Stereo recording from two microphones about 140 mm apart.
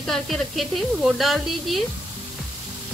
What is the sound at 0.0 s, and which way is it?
A woman's voice, centre (ahead or behind).